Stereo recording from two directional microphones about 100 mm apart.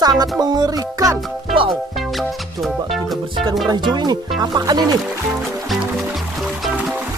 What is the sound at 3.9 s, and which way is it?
Speech, 45° right (ahead or behind).